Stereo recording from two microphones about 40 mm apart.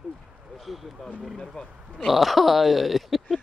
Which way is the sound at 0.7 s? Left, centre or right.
Centre.